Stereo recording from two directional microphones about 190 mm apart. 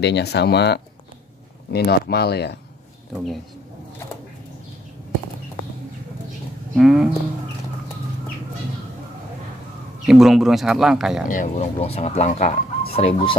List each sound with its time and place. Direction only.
0.0 s speech: 60° left (ahead or behind)
6.7 s a sound: centre (ahead or behind)
10.0 s speech: centre (ahead or behind)
11.2 s speech: 40° left (ahead or behind)